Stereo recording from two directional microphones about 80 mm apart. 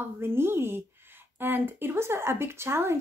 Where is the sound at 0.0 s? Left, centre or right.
Right.